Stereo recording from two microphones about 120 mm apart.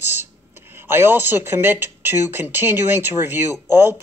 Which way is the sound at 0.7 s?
20° right (ahead or behind).